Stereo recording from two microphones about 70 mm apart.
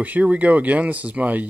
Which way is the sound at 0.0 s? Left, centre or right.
Right.